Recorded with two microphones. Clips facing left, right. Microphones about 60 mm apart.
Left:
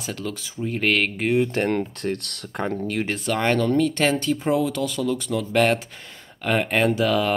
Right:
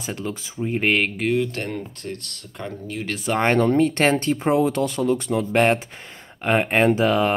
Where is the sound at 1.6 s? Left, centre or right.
Left.